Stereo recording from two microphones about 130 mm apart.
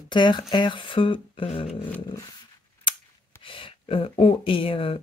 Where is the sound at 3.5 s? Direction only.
45° left (ahead or behind).